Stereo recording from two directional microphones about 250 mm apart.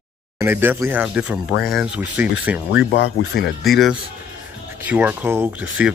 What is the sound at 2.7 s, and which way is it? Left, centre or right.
Speech, left.